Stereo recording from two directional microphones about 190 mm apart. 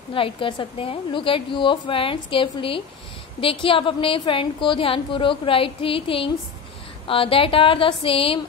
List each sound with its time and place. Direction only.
0.1 s a woman's voice: 25° left (ahead or behind)